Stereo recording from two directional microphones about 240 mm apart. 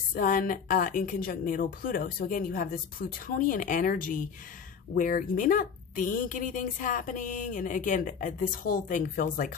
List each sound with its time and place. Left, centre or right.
0.1 s speech: left